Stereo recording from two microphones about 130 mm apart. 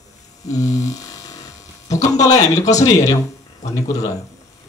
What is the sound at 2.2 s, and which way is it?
Speech, 25° left (ahead or behind).